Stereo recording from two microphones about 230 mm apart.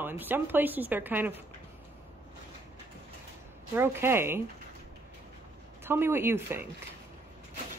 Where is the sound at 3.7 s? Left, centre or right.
Centre.